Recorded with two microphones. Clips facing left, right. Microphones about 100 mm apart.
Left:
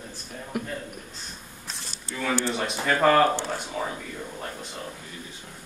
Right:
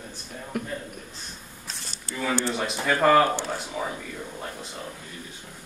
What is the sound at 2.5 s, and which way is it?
Speech, centre (ahead or behind).